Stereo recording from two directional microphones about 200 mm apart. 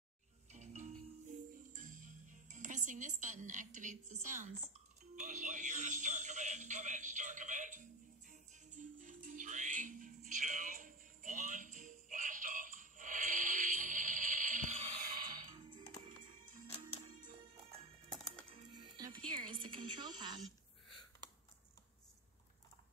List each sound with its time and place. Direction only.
0.5 s music: 35° right (ahead or behind)
5.2 s speech: 40° right (ahead or behind)
8.3 s music: 40° right (ahead or behind)
17.2 s music: 25° right (ahead or behind)
18.1 s music: centre (ahead or behind)
18.5 s music: 20° right (ahead or behind)